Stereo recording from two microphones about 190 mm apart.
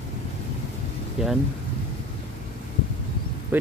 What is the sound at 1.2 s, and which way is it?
Speech, 5° right (ahead or behind).